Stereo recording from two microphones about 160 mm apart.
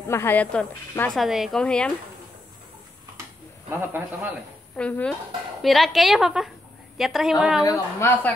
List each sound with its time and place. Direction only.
0.0 s speech: 15° left (ahead or behind)
3.7 s speech: 15° right (ahead or behind)
4.7 s a woman's voice: 5° left (ahead or behind)
7.6 s speech: 20° left (ahead or behind)